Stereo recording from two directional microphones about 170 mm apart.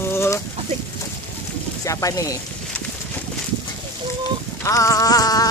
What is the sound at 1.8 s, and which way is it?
Speech, 20° left (ahead or behind).